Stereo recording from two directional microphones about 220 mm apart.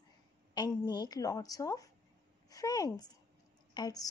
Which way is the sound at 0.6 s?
20° left (ahead or behind).